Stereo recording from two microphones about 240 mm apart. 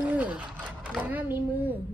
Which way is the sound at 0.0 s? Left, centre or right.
Centre.